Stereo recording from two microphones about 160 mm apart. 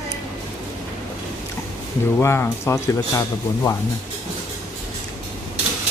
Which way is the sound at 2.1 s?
15° left (ahead or behind).